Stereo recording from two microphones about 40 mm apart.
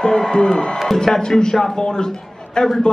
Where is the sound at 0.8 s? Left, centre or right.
Centre.